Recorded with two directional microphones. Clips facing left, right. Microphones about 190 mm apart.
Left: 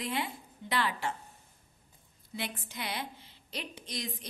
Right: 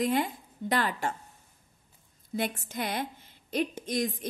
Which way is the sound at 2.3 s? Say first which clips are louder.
Right 8 dB; 45° right (ahead or behind).